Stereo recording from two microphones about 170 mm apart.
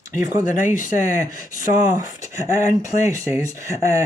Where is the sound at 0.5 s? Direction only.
50° left (ahead or behind).